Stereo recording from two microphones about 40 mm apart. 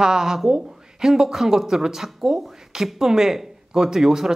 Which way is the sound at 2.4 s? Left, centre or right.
Centre.